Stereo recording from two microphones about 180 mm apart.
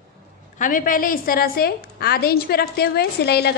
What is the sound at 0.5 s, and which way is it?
A woman's voice, 45° left (ahead or behind).